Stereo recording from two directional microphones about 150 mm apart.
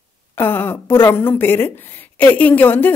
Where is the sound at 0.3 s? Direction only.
15° left (ahead or behind).